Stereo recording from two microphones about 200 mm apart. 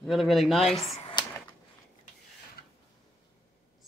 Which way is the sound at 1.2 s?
20° left (ahead or behind).